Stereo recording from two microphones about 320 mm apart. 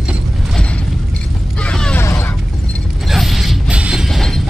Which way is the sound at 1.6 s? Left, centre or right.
Centre.